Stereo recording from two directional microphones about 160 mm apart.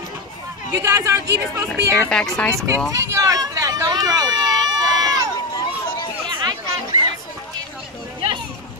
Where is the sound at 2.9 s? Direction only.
20° right (ahead or behind).